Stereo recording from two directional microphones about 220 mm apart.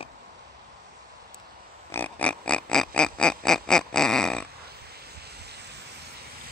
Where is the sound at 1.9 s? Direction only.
5° left (ahead or behind).